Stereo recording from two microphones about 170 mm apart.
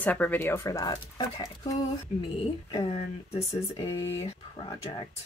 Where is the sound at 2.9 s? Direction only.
35° left (ahead or behind).